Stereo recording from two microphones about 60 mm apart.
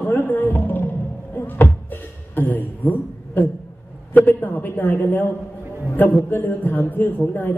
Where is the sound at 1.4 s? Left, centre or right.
Left.